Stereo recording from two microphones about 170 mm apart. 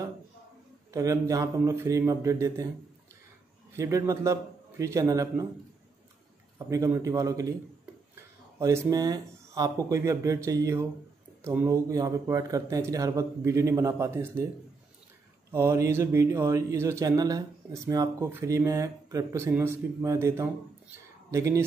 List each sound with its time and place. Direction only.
0.9 s speech: 20° right (ahead or behind)
3.7 s speech: 15° right (ahead or behind)
6.7 s speech: 20° right (ahead or behind)
8.5 s speech: 20° right (ahead or behind)
15.5 s speech: 15° right (ahead or behind)